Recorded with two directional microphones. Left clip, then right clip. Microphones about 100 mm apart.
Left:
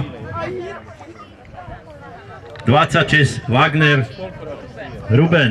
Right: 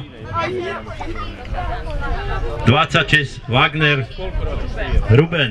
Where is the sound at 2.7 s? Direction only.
55° left (ahead or behind).